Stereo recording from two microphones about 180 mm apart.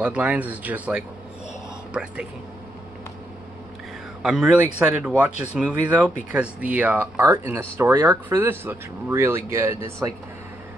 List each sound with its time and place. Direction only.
0.0 s speech: 10° right (ahead or behind)
4.2 s speech: 5° right (ahead or behind)